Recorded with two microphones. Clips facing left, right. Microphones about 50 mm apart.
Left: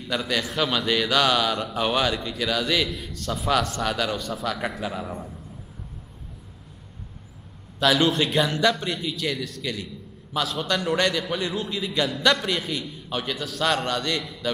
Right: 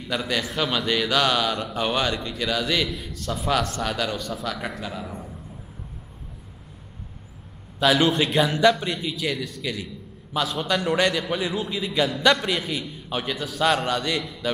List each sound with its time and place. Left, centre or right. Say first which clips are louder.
0.0 s a man's voice: even; centre
7.8 s a man's voice: right 1 dB; centre